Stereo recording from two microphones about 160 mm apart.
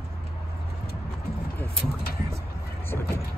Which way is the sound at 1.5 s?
10° left (ahead or behind).